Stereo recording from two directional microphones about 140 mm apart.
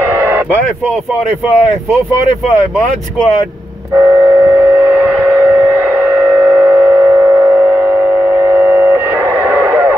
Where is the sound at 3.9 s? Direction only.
15° right (ahead or behind).